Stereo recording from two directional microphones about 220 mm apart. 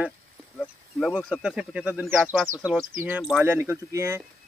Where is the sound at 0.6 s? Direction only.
5° left (ahead or behind).